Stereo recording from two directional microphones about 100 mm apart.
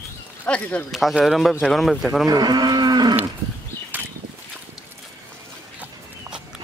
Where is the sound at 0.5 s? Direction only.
15° left (ahead or behind).